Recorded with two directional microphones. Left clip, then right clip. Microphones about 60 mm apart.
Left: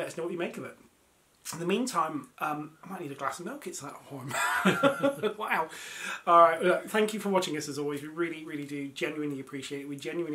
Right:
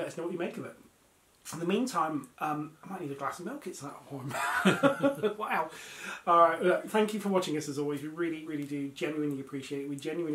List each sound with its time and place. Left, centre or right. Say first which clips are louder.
0.0 s speech: left 1 dB; left